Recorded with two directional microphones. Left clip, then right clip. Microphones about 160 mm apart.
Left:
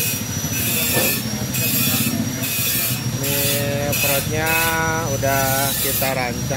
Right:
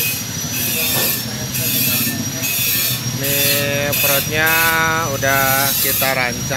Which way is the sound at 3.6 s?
Centre (ahead or behind).